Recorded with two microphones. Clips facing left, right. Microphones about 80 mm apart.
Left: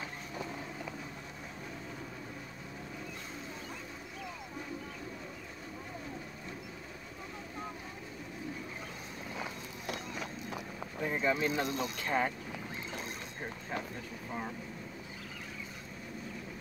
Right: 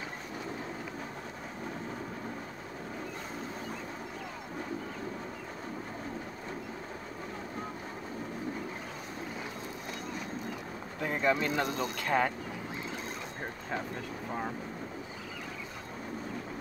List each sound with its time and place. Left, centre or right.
11.0 s speech: right
12.0 s speech: right